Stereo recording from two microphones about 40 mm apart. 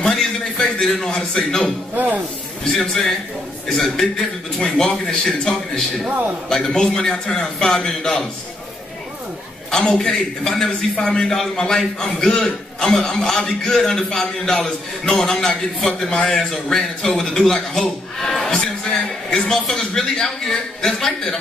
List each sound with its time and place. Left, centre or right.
0.0 s a man's voice: centre
2.7 s a man's voice: centre
9.7 s a man's voice: centre